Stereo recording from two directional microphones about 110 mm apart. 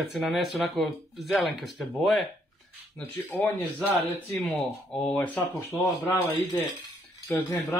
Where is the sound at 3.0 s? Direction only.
15° left (ahead or behind).